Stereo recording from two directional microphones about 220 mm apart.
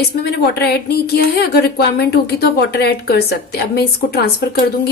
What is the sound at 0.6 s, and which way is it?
Speech, 45° left (ahead or behind).